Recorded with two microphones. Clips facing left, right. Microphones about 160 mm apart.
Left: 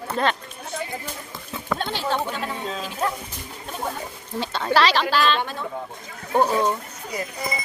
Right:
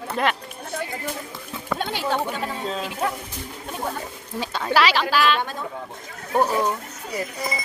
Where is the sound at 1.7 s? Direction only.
10° right (ahead or behind).